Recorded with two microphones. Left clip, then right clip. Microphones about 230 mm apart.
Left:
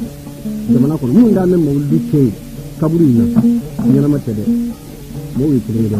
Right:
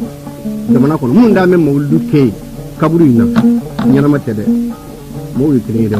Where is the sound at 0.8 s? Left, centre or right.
Right.